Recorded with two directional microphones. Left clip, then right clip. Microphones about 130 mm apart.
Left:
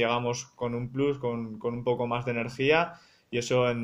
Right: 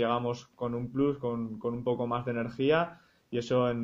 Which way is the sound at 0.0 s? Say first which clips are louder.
Left 2 dB; 55° right (ahead or behind).